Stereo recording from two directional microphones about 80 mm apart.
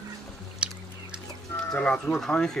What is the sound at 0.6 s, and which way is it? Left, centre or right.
Chewing, centre.